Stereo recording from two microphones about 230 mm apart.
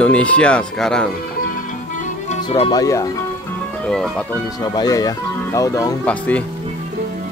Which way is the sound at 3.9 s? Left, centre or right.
Centre.